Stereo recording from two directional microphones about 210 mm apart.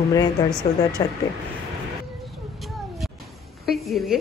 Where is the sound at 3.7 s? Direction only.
Centre (ahead or behind).